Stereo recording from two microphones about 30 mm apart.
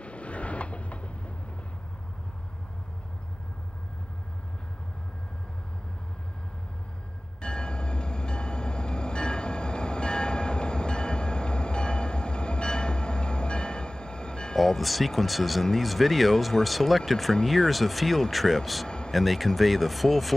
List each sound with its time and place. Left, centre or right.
0.0 s train: left
7.4 s train: left
14.6 s speech: centre
18.9 s a sound: left
19.1 s speech: centre